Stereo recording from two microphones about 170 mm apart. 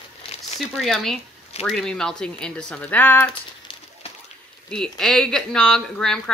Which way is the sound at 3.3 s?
30° left (ahead or behind).